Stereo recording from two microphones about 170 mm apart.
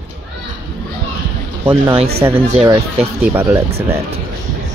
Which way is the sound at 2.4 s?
40° right (ahead or behind).